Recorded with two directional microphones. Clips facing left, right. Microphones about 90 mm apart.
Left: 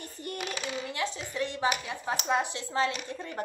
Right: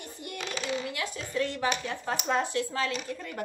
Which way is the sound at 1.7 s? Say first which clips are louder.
Even; 10° left (ahead or behind).